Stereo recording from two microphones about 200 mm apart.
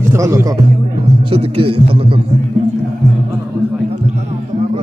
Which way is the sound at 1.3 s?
30° right (ahead or behind).